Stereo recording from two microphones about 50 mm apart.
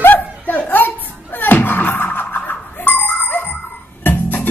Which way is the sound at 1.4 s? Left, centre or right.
Left.